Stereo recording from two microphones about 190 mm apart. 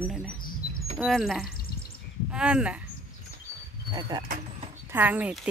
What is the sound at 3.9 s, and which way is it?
Speech, 20° right (ahead or behind).